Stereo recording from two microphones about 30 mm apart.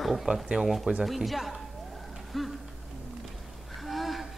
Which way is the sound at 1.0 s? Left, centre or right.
Centre.